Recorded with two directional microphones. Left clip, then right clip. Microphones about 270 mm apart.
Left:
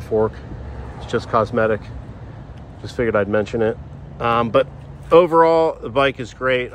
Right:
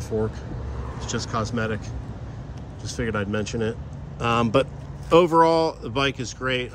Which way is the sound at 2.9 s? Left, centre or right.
Centre.